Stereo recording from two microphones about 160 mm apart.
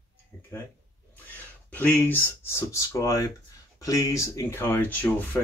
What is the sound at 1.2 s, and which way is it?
Speech, 10° left (ahead or behind).